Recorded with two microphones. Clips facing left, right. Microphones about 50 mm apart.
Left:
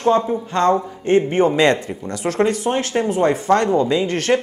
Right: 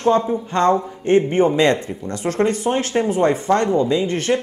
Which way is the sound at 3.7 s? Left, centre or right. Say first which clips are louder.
Left 1 dB; centre.